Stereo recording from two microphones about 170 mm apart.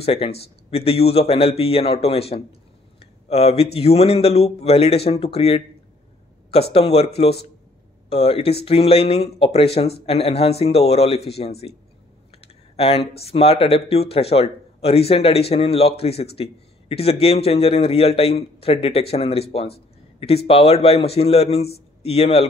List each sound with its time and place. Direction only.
0.0 s speech: 35° left (ahead or behind)
6.7 s speech: 35° left (ahead or behind)
8.1 s speech: 35° left (ahead or behind)